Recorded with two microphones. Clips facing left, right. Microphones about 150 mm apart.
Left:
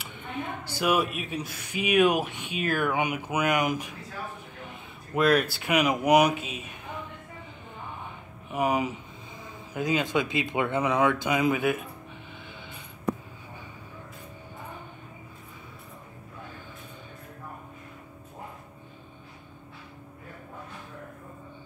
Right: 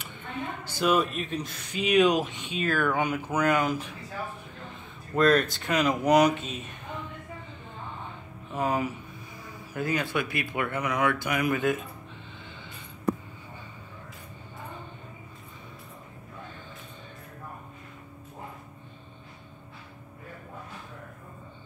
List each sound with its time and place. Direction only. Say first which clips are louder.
0.7 s speech: right 1 dB; 10° left (ahead or behind)
8.5 s speech: left 2 dB; 15° left (ahead or behind)
11.5 s speech: even; 10° left (ahead or behind)